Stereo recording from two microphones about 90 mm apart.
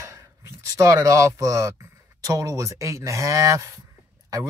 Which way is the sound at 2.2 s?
40° right (ahead or behind).